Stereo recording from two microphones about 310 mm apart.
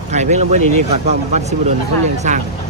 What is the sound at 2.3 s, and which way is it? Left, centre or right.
Speech, right.